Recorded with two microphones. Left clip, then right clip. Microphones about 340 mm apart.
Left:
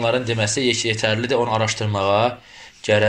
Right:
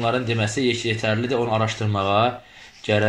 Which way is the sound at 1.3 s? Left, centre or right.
Left.